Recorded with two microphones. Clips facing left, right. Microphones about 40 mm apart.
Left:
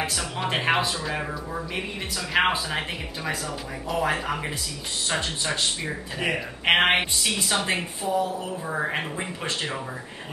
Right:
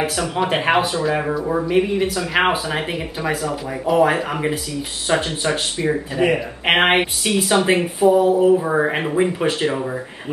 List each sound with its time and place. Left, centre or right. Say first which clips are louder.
0.0 s speech: right 8 dB; centre